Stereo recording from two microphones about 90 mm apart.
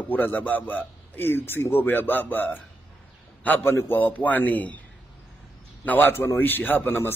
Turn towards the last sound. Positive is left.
turn(degrees=25)  # may be behind; listen again after turning